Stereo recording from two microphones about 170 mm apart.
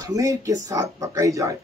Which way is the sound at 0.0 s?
20° right (ahead or behind).